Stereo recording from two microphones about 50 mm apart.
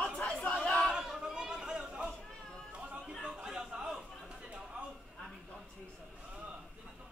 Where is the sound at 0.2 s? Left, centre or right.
Centre.